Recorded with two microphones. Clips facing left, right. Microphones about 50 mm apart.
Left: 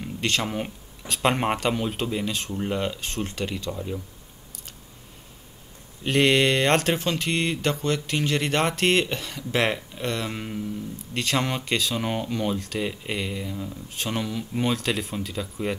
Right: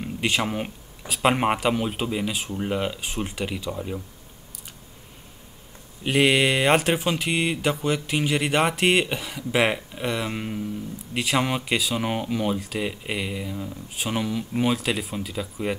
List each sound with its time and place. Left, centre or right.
0.0 s speech: centre
6.0 s speech: centre